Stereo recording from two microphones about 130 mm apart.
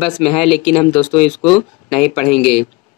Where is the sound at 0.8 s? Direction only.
40° left (ahead or behind).